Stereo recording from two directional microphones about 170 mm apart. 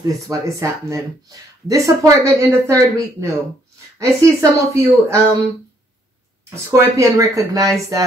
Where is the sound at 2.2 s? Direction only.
15° right (ahead or behind).